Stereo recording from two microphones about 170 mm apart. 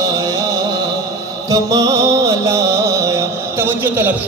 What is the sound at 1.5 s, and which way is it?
Music, 20° right (ahead or behind).